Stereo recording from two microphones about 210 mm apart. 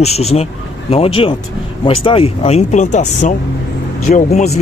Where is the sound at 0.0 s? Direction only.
30° left (ahead or behind).